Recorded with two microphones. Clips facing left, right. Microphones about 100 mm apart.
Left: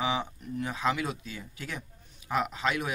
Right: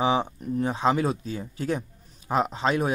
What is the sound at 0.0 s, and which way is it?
Speech, 35° right (ahead or behind).